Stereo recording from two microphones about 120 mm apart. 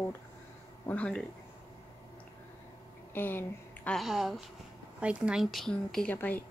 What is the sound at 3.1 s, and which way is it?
Speech, 20° left (ahead or behind).